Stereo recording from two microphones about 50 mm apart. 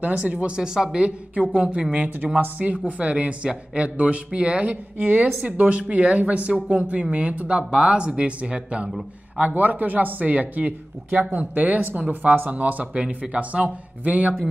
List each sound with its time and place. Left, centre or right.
0.0 s speech: right
4.9 s speech: right
9.5 s speech: right